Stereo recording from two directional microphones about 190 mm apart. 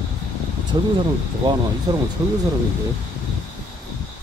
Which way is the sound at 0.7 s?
20° right (ahead or behind).